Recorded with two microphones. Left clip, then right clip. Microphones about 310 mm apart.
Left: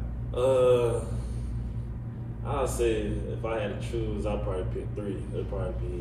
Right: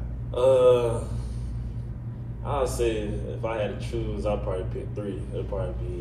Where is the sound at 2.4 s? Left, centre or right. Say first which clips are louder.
Right 2 dB; centre.